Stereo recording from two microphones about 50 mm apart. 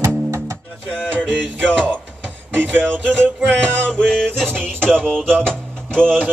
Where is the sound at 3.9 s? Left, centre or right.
Centre.